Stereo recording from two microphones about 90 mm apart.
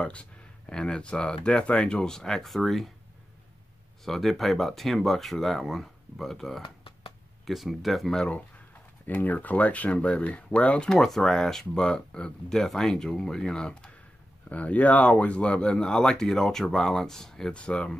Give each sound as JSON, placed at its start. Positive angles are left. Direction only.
{"t": 0.0, "sound": "speech", "side_deg": 10}
{"t": 4.0, "sound": "speech", "side_deg": 5}
{"t": 6.6, "sound": "a sound", "side_deg": 85}
{"t": 7.4, "sound": "speech", "side_deg": 0}
{"t": 9.0, "sound": "speech", "side_deg": 20}